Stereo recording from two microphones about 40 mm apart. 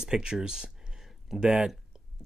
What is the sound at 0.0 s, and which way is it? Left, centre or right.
Speech, centre.